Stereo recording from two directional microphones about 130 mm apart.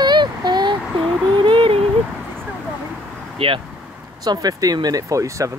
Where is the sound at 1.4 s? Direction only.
40° right (ahead or behind).